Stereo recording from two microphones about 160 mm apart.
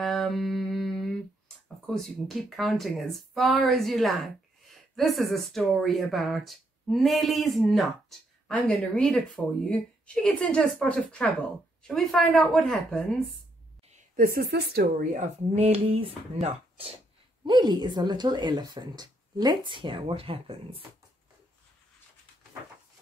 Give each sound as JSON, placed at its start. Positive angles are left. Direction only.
{"t": 0.0, "sound": "mantra", "side_deg": 0}
{"t": 2.0, "sound": "speech", "side_deg": 0}
{"t": 13.8, "sound": "speech", "side_deg": -55}
{"t": 15.1, "sound": "speech", "side_deg": -45}
{"t": 17.5, "sound": "speech", "side_deg": -25}